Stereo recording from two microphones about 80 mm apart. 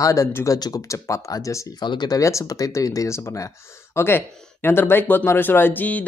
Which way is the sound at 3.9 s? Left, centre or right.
Left.